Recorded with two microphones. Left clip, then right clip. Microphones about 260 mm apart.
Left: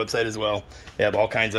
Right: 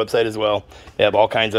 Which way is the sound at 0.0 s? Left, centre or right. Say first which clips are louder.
Right 6 dB; centre.